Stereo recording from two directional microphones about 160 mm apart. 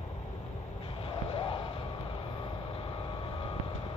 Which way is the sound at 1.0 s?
35° left (ahead or behind).